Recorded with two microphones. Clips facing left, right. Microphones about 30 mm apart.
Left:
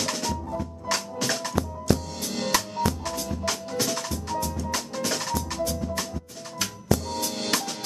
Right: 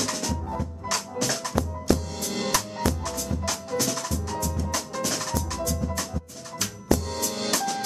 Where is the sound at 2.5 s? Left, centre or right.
Centre.